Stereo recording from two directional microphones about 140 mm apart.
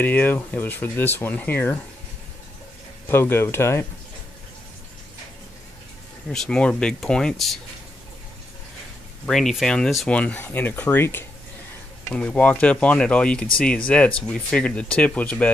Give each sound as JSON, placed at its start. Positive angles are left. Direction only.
{"t": 0.0, "sound": "speech", "side_deg": 10}
{"t": 3.1, "sound": "speech", "side_deg": 15}
{"t": 6.3, "sound": "speech", "side_deg": 5}
{"t": 9.2, "sound": "speech", "side_deg": 0}